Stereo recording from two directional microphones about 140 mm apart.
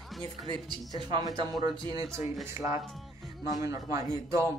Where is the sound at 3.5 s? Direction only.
25° right (ahead or behind).